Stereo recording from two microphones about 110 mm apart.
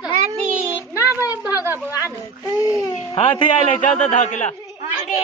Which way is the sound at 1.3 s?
15° right (ahead or behind).